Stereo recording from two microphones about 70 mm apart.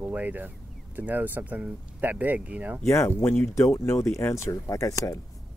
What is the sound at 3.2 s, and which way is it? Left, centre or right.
Speech, left.